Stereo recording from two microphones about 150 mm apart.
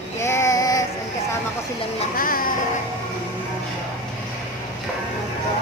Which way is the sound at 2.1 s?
70° left (ahead or behind).